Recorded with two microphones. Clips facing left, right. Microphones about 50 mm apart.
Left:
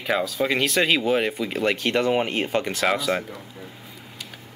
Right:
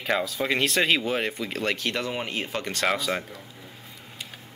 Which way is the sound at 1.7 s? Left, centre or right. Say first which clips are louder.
Left 8 dB; left.